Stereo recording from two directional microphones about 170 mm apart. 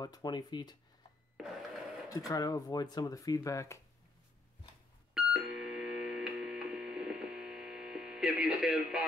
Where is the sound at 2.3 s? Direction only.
20° left (ahead or behind).